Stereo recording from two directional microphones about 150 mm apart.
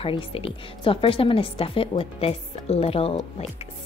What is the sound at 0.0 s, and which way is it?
A woman's voice, 40° left (ahead or behind).